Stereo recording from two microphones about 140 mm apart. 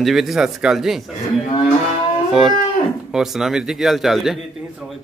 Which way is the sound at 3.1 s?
5° right (ahead or behind).